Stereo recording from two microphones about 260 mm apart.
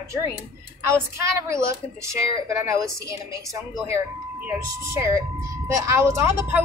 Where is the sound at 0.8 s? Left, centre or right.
Centre.